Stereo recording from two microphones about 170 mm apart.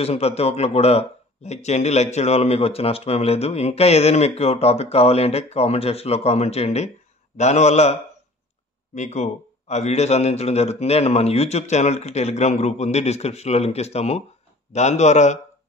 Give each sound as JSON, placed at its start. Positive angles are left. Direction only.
{"t": 0.0, "sound": "a man's voice", "side_deg": 35}